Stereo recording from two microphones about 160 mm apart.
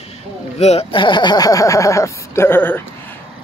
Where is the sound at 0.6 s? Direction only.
40° left (ahead or behind).